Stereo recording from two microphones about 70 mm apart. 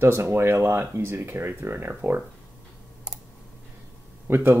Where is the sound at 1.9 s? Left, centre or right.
Right.